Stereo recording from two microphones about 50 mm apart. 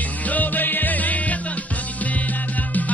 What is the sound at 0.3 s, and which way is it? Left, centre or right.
Music, left.